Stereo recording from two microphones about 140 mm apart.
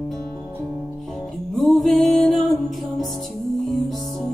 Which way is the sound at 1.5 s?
Centre (ahead or behind).